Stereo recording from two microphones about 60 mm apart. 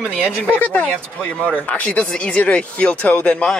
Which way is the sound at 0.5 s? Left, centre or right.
Left.